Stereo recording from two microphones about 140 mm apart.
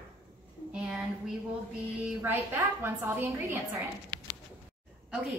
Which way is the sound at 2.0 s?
15° right (ahead or behind).